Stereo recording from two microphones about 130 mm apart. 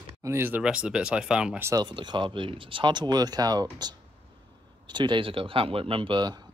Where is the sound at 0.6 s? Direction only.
5° right (ahead or behind).